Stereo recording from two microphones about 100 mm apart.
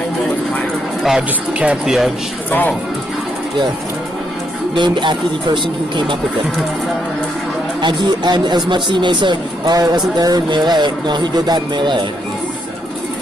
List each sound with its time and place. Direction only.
1.0 s speech: 10° right (ahead or behind)
4.7 s speech: 50° right (ahead or behind)
7.8 s speech: 50° right (ahead or behind)